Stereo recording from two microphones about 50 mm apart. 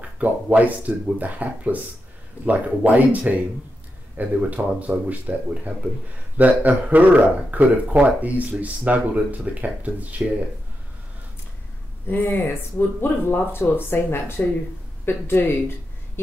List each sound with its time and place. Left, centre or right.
0.0 s speech: right
12.1 s speech: left